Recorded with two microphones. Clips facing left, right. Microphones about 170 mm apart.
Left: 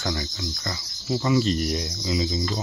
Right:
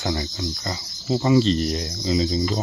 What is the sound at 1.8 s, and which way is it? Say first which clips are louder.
Speech: right 4 dB; 40° right (ahead or behind).